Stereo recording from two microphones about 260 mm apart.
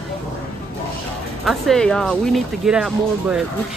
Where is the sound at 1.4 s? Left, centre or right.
Centre.